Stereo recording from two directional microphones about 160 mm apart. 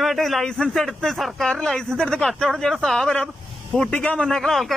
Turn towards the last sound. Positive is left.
turn(degrees=0)  # may be behind; listen again after turning